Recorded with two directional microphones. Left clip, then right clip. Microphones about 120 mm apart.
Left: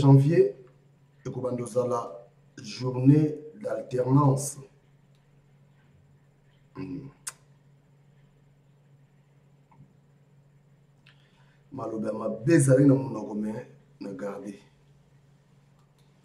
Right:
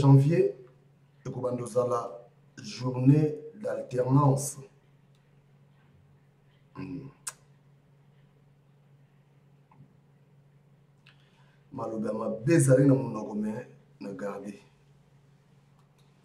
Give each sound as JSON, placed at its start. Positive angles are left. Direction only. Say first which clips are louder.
{"t": 0.0, "sound": "a man's voice", "louder": "left 3 dB", "side_deg": 0}
{"t": 6.7, "sound": "a sound", "louder": "left 2 dB", "side_deg": 0}
{"t": 11.7, "sound": "a man's voice", "louder": "left 1 dB", "side_deg": -5}